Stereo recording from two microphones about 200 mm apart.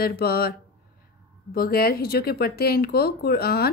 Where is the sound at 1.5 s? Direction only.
50° left (ahead or behind).